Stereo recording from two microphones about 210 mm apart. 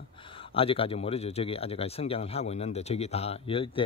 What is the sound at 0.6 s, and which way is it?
Speech, 25° left (ahead or behind).